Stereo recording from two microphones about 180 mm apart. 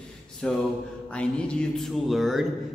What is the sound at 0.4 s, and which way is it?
A man's voice, 5° left (ahead or behind).